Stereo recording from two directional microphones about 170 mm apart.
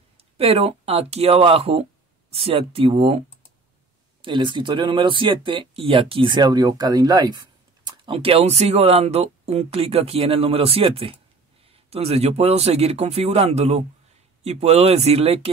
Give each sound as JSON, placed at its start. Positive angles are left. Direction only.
{"t": 0.2, "sound": "speech", "side_deg": -35}
{"t": 4.2, "sound": "speech", "side_deg": -30}